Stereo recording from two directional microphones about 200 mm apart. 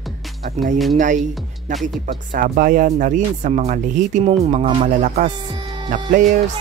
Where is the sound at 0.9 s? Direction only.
40° right (ahead or behind).